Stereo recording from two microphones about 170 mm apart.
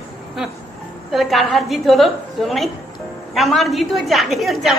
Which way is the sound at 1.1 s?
Centre (ahead or behind).